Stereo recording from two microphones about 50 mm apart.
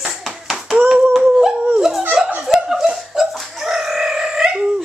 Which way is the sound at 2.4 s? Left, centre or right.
Centre.